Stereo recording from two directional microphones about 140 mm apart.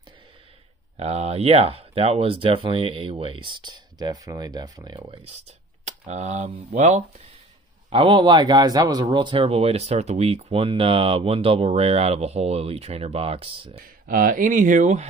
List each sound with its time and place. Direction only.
0.9 s speech: 50° right (ahead or behind); by 5.0 s 30° right (ahead or behind)
5.0 s speech: 40° right (ahead or behind)
5.9 s speech: 55° right (ahead or behind)
7.9 s speech: 35° right (ahead or behind)
13.7 s speech: 85° right; by 15.0 s 60° right (ahead or behind)